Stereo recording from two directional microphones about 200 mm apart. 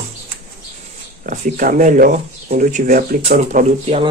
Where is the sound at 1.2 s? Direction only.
40° right (ahead or behind).